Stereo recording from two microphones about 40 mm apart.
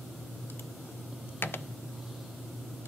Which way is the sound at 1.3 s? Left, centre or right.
Left.